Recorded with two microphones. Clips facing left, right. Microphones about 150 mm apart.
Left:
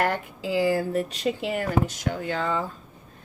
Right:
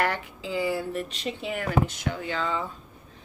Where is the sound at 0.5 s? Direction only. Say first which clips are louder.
Left 5 dB; 85° left.